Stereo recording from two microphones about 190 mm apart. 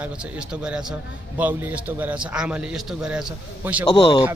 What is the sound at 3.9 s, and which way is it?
Speech, 25° left (ahead or behind).